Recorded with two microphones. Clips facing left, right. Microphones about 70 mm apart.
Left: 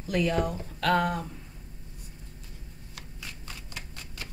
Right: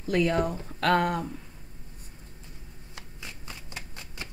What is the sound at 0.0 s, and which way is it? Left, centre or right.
Speech, right.